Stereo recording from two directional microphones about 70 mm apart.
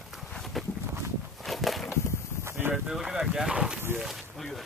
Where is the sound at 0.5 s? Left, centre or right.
Centre.